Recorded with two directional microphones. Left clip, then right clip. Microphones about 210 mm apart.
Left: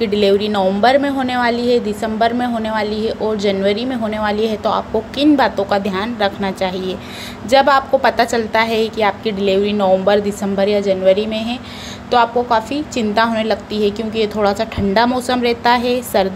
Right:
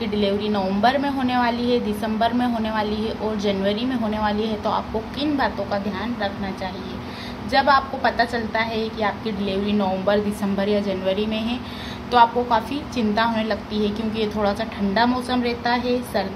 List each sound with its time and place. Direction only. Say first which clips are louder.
0.0 s a woman's voice: left 9 dB; 30° left (ahead or behind)